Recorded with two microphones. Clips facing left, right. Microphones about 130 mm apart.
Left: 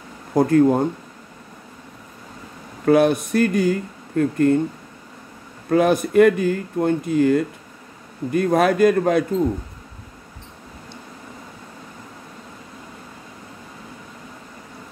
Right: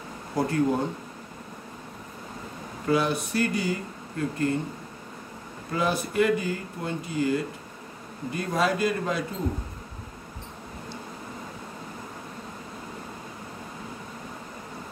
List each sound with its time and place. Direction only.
0.3 s speech: 50° left (ahead or behind)
2.8 s speech: 55° left (ahead or behind)
5.7 s speech: 55° left (ahead or behind)